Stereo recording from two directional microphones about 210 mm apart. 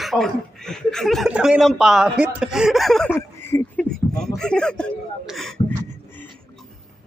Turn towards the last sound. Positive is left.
turn(degrees=10)  # may be behind; listen again after turning